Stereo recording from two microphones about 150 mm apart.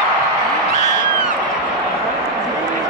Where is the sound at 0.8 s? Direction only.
55° left (ahead or behind).